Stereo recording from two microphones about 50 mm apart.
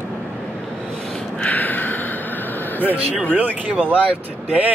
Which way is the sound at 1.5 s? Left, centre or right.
Left.